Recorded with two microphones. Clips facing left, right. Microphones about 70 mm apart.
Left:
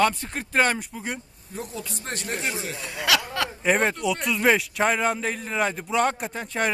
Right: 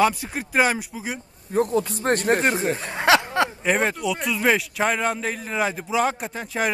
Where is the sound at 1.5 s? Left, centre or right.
Right.